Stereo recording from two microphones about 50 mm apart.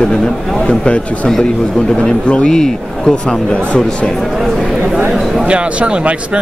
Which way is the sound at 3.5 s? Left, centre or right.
Left.